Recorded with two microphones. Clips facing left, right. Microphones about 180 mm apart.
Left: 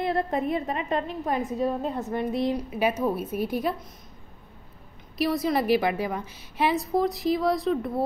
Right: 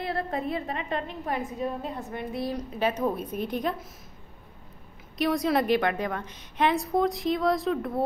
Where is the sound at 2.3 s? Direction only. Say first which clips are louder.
Left 4 dB; 20° left (ahead or behind).